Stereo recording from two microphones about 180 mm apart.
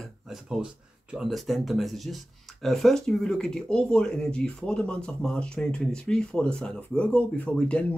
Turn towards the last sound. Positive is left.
turn(degrees=5)  # may be behind; listen again after turning